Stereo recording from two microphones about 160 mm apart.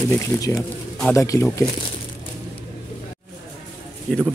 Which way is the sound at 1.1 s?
20° left (ahead or behind).